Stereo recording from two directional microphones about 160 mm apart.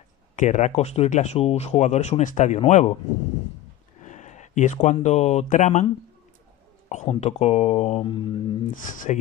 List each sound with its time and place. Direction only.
0.4 s speech: 45° left (ahead or behind)
4.0 s a sound: 50° left (ahead or behind)
4.9 s speech: 45° left (ahead or behind)
6.9 s speech: 45° left (ahead or behind)
8.8 s speech: 55° left (ahead or behind)